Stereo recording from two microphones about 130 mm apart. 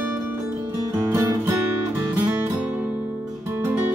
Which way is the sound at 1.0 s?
20° right (ahead or behind).